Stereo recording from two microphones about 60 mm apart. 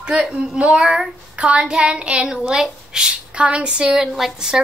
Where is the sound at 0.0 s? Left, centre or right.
Centre.